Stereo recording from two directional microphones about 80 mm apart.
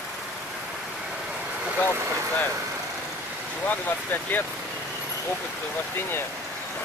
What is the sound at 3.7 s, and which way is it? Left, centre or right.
Speech, left.